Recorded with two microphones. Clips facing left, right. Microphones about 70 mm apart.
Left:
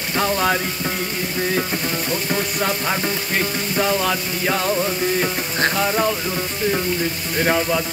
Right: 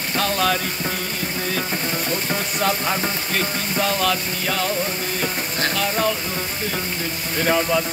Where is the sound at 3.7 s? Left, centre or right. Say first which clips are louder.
Left 1 dB; centre.